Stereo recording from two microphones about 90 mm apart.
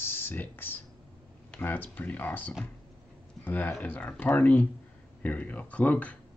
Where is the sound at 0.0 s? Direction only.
25° left (ahead or behind).